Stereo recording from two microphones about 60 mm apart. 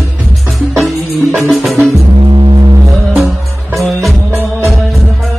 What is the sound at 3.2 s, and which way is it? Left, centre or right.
Music, centre.